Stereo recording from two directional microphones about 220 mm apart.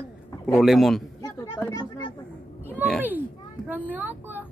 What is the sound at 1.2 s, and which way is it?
Children playing, 15° left (ahead or behind).